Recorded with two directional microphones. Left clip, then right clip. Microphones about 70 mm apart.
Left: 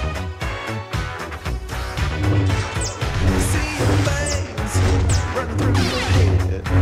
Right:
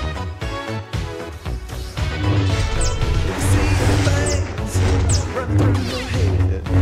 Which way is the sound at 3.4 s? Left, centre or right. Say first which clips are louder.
Right 3 dB; centre.